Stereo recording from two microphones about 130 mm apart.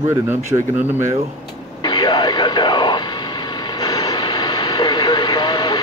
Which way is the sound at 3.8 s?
30° left (ahead or behind).